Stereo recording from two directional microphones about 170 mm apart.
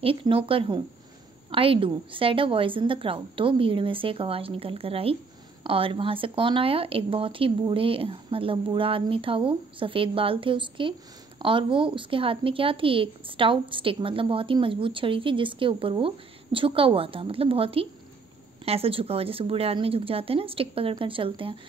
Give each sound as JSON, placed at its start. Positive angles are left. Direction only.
{"t": 0.0, "sound": "speech", "side_deg": -30}